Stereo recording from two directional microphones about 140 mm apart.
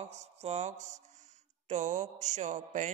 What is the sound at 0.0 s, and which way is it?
Mantra, 50° right (ahead or behind).